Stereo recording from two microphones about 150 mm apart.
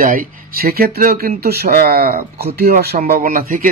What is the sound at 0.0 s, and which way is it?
A man's voice, 65° right (ahead or behind).